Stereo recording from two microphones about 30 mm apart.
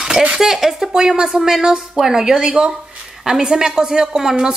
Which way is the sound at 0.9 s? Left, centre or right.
Right.